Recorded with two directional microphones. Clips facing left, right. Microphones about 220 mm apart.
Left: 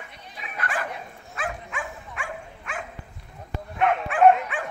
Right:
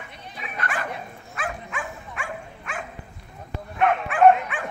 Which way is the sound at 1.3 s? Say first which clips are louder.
Even; 30° left (ahead or behind).